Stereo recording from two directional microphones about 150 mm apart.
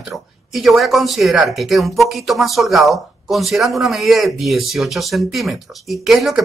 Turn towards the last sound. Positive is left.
turn(degrees=0)  # may be behind; listen again after turning